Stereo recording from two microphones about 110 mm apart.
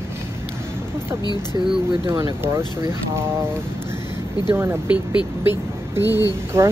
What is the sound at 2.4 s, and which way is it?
Speech, 25° right (ahead or behind).